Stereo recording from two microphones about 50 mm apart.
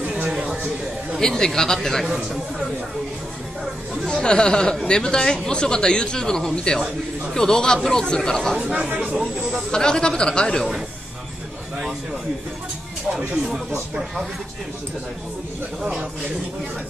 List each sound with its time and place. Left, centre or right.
0.0 s a sound: right
1.2 s speech: centre
4.1 s speech: centre
9.0 s speech: centre
9.7 s speech: centre